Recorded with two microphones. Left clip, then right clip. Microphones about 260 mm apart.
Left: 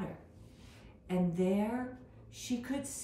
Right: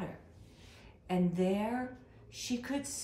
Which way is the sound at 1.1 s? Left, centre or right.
Centre.